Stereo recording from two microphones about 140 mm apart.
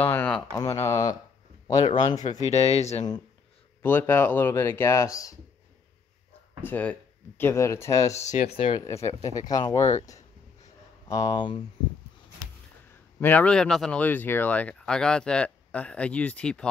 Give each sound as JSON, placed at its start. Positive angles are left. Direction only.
{"t": 0.0, "sound": "a sound", "side_deg": 15}
{"t": 0.6, "sound": "speech", "side_deg": 20}
{"t": 2.4, "sound": "speech", "side_deg": 50}
{"t": 3.8, "sound": "speech", "side_deg": 15}
{"t": 6.6, "sound": "speech", "side_deg": 10}
{"t": 8.1, "sound": "speech", "side_deg": 55}
{"t": 8.7, "sound": "speech", "side_deg": 20}
{"t": 11.1, "sound": "speech", "side_deg": 25}
{"t": 13.2, "sound": "speech", "side_deg": 10}